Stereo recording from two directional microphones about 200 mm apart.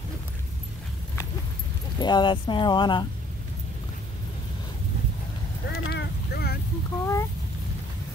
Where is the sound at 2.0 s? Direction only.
20° left (ahead or behind).